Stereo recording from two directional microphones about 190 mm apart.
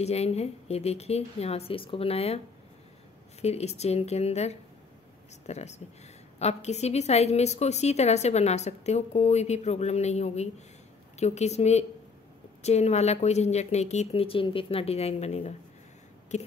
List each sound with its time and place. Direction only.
0.0 s a woman's voice: 35° left (ahead or behind)